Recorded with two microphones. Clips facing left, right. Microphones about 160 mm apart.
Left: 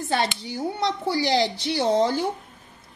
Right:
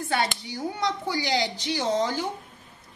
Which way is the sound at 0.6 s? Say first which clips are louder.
Left 3 dB; 30° left (ahead or behind).